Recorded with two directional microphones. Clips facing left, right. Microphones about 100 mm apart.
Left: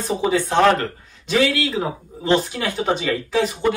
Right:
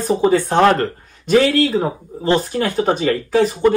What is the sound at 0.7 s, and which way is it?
Speech, 45° right (ahead or behind).